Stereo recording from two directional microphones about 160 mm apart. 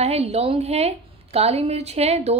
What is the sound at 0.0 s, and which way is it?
A woman's voice, 40° right (ahead or behind).